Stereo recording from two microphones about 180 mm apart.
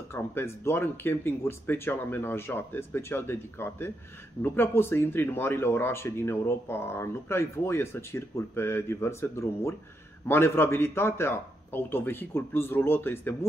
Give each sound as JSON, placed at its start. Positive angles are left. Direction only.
{"t": 0.1, "sound": "speech", "side_deg": 15}